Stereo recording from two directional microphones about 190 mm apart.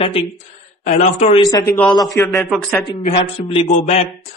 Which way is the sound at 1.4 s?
20° left (ahead or behind).